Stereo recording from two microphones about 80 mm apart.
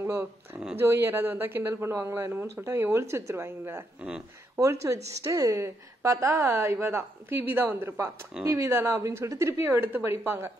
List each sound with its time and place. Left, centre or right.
0.0 s a woman's voice: right
4.6 s a woman's voice: right
8.5 s a woman's voice: right